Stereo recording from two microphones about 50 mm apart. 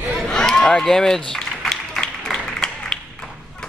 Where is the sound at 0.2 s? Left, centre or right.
Centre.